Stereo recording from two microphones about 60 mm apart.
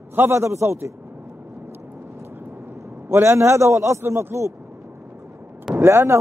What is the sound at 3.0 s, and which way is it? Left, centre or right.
A man's voice, right.